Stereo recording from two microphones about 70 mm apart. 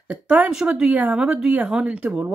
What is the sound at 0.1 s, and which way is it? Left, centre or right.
Speech, centre.